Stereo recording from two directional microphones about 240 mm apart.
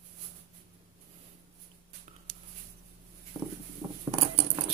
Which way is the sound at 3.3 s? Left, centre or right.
Centre.